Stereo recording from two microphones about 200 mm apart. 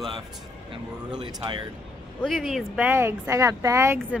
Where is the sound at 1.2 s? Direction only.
20° right (ahead or behind).